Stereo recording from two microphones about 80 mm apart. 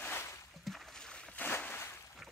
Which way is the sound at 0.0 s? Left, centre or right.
Left.